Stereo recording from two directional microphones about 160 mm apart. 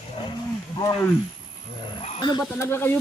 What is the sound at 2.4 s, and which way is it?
Speech, 15° left (ahead or behind).